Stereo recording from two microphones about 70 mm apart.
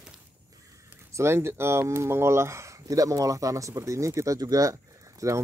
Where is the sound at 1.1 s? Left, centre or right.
Right.